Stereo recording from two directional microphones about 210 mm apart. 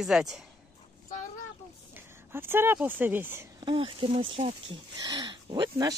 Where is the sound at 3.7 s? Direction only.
25° right (ahead or behind).